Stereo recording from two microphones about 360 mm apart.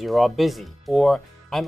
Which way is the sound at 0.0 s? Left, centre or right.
Centre.